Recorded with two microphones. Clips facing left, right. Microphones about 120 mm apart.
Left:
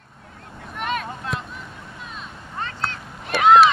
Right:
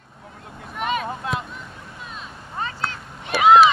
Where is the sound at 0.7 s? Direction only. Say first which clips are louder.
Right 2 dB; centre (ahead or behind).